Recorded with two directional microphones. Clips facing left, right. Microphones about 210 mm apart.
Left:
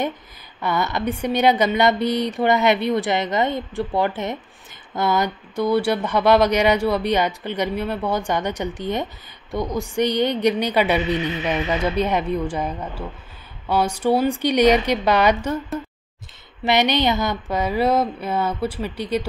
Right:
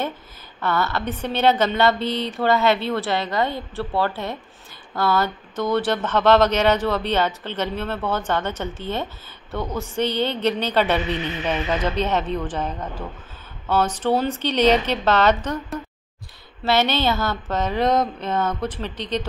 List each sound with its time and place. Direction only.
0.6 s speech: 15° left (ahead or behind)
16.6 s speech: 15° left (ahead or behind)